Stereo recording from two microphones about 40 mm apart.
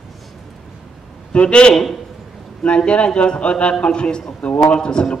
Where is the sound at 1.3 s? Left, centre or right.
Left.